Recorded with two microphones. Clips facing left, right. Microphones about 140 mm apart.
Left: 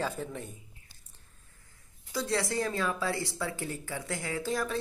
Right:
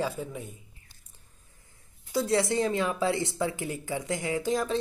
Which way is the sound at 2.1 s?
25° right (ahead or behind).